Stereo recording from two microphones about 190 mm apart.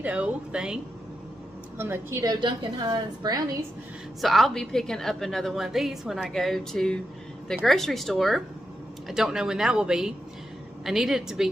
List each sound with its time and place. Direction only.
0.0 s a woman's voice: 5° right (ahead or behind)
1.8 s a woman's voice: 15° right (ahead or behind)
4.2 s a woman's voice: centre (ahead or behind)